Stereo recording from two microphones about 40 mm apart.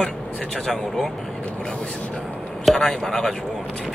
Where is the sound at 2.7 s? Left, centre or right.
Centre.